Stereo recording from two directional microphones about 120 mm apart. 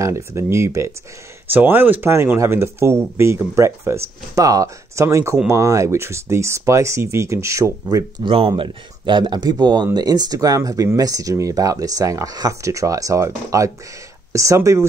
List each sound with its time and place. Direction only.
0.0 s speech: 25° right (ahead or behind)
8.2 s speech: 45° right (ahead or behind); by 14.9 s 25° right (ahead or behind)